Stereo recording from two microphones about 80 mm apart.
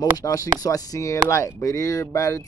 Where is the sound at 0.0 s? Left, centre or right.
Left.